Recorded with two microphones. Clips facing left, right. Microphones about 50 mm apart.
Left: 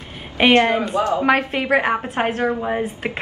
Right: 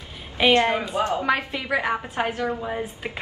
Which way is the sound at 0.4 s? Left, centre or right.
Left.